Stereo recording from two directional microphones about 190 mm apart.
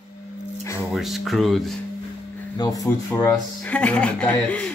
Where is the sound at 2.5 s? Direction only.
20° left (ahead or behind).